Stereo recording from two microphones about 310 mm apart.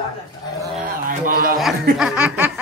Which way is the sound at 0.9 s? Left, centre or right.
Right.